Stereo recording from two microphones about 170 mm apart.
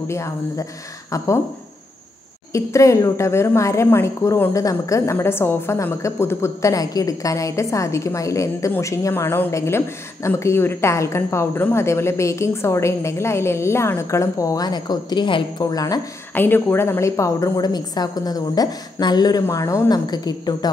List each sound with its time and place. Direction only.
0.1 s a woman's voice: 15° left (ahead or behind)
2.5 s a woman's voice: 20° left (ahead or behind)